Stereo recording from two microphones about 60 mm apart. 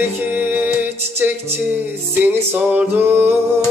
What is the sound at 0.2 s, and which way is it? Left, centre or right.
Music, right.